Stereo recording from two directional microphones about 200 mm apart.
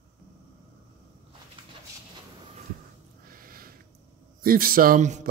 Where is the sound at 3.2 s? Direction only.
45° right (ahead or behind).